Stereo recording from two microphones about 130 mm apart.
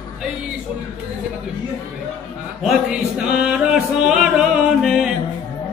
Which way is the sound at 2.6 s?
5° right (ahead or behind).